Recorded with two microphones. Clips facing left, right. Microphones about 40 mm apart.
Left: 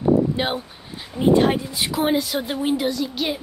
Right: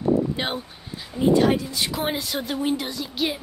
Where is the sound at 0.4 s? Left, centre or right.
Centre.